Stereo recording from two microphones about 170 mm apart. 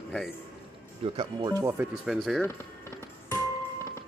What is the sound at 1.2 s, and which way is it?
Speech, 25° right (ahead or behind).